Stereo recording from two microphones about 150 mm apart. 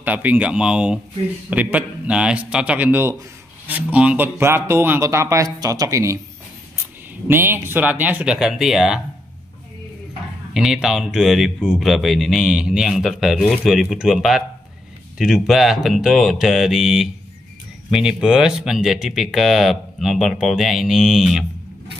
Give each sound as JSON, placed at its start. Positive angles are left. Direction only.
{"t": 0.0, "sound": "speech", "side_deg": -10}
{"t": 7.2, "sound": "speech", "side_deg": -15}
{"t": 10.5, "sound": "speech", "side_deg": -5}